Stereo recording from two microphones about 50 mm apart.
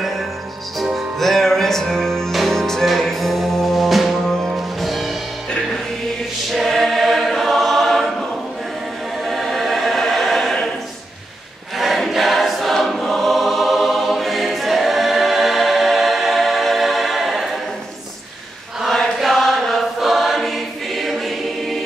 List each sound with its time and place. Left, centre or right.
0.9 s music: centre
6.5 s choir: centre
9.2 s choir: centre
11.7 s choir: centre
19.1 s choir: centre